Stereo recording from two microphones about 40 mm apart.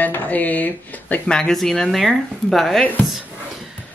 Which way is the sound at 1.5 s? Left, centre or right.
Centre.